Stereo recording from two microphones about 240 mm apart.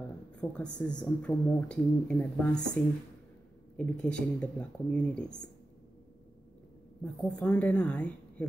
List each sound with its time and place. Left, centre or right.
0.4 s speech: centre
4.0 s speech: centre
7.2 s speech: centre